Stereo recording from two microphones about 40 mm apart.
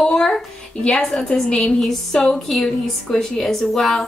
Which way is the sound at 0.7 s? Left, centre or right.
Left.